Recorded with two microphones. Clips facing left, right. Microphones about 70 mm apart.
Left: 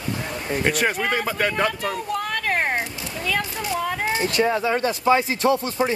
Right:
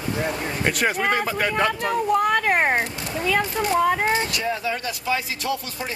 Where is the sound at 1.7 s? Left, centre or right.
Centre.